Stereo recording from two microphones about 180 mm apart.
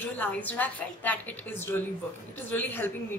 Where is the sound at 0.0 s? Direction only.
10° left (ahead or behind).